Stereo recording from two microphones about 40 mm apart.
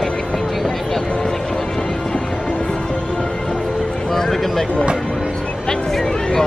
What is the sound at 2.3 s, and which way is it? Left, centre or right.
Music, left.